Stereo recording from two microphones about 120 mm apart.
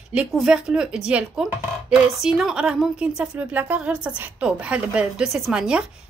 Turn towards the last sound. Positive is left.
turn(degrees=-5)  # may be behind; listen again after turning